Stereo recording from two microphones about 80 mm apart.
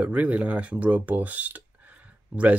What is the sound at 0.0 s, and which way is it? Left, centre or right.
Speech, centre.